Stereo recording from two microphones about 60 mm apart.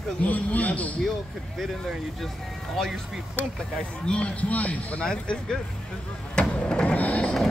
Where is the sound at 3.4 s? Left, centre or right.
Left.